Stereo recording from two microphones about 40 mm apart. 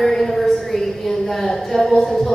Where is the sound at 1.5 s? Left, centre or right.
Centre.